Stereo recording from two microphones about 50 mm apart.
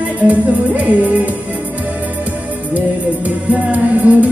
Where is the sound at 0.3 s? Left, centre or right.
Right.